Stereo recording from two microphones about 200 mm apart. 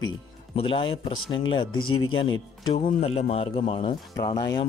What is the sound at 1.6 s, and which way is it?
Speech, 90° left.